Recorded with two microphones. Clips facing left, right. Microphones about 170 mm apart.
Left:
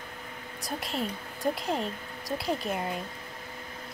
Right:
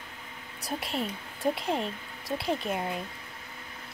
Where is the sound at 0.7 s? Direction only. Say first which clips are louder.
Even; centre (ahead or behind).